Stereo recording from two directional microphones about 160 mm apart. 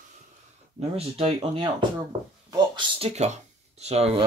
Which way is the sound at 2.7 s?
40° right (ahead or behind).